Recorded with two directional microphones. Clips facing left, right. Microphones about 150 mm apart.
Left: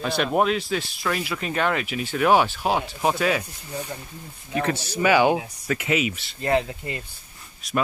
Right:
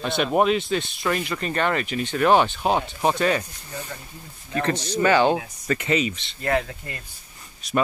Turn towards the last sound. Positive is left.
turn(degrees=0)  # may be behind; listen again after turning